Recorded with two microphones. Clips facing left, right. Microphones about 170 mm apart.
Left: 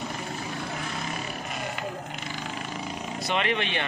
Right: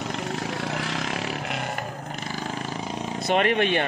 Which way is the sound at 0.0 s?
80° right.